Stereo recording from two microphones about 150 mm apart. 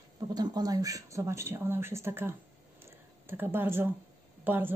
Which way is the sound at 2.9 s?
15° right (ahead or behind).